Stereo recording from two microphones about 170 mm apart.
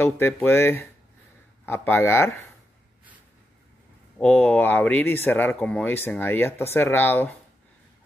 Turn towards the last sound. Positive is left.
turn(degrees=10)  # may be behind; listen again after turning